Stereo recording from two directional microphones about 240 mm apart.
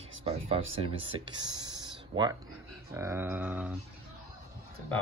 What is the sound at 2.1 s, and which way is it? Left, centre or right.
Speech, centre.